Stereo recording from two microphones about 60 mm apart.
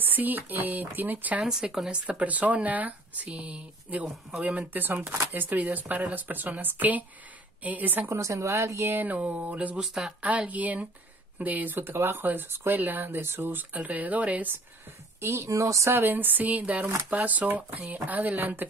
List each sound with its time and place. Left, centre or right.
0.0 s speech: right
1.4 s speech: centre
2.0 s speech: right
3.3 s speech: centre
5.3 s speech: right
8.1 s speech: right
8.9 s speech: right
9.8 s speech: centre
10.2 s speech: right
11.8 s speech: right
15.1 s speech: right
15.9 s speech: right